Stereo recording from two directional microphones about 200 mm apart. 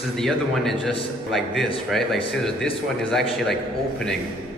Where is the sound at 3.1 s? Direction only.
Centre (ahead or behind).